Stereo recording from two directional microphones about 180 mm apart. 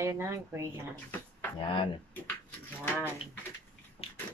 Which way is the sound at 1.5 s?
25° left (ahead or behind).